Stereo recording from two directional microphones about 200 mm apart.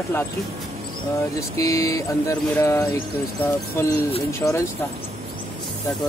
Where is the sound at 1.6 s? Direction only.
15° left (ahead or behind).